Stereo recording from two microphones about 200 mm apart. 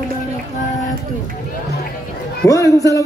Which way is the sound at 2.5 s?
15° left (ahead or behind).